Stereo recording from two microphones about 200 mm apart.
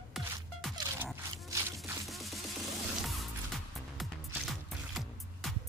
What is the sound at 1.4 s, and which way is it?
Music, 15° right (ahead or behind).